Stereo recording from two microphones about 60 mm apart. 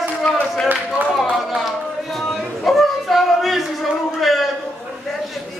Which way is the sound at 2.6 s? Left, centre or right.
Centre.